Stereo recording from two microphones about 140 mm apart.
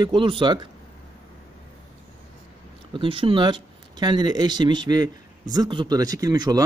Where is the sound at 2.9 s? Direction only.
40° right (ahead or behind).